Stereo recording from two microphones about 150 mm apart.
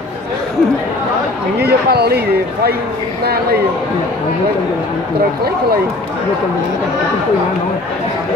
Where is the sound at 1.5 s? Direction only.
90° right.